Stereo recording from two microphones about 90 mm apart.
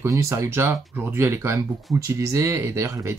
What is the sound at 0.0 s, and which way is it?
Speech, 35° right (ahead or behind).